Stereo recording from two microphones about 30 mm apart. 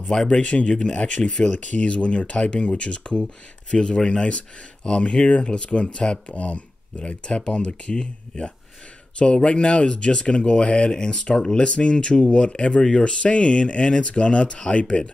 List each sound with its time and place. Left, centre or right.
0.0 s speech: centre
0.3 s speech: left
0.7 s speech: left
1.0 s speech: left
3.7 s speech: left
6.3 s speech: left
7.2 s speech: left